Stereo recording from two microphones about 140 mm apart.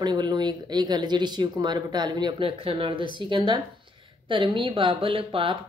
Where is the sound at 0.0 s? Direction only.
30° right (ahead or behind).